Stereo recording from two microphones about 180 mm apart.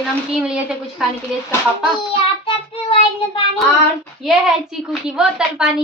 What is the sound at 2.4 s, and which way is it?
Child singing, 30° left (ahead or behind).